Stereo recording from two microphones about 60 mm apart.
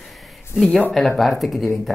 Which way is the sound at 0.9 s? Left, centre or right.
Centre.